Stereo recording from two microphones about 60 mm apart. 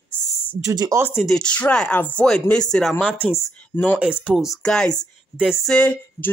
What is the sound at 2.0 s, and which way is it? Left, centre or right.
Speech, left.